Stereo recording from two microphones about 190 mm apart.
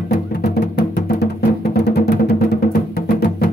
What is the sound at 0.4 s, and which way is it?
Music, 60° left (ahead or behind).